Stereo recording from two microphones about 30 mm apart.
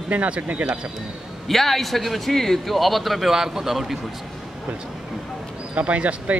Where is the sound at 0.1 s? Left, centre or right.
Right.